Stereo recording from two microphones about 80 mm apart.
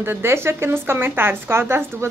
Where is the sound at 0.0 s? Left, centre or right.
Right.